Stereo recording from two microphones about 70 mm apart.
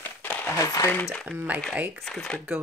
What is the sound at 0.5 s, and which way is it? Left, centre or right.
Speech, left.